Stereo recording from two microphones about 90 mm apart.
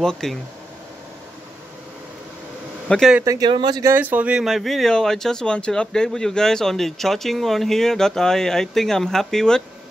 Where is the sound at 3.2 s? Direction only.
40° right (ahead or behind).